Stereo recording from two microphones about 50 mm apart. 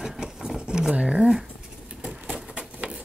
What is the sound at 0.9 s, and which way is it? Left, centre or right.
Speech, right.